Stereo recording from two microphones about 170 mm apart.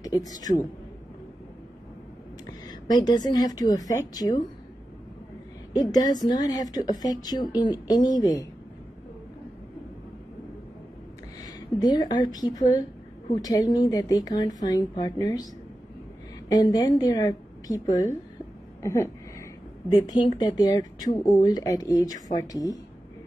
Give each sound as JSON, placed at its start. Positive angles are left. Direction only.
{"t": 0.0, "sound": "speech", "side_deg": 20}
{"t": 2.7, "sound": "speech", "side_deg": 25}
{"t": 5.7, "sound": "speech", "side_deg": 20}
{"t": 11.4, "sound": "speech", "side_deg": 25}
{"t": 16.4, "sound": "speech", "side_deg": 20}
{"t": 18.8, "sound": "a sound", "side_deg": 15}
{"t": 19.9, "sound": "speech", "side_deg": 25}